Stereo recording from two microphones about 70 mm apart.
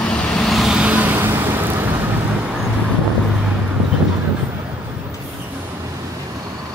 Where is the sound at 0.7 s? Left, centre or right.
Centre.